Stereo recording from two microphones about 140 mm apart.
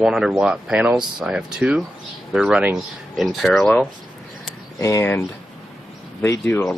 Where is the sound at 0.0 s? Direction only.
5° right (ahead or behind).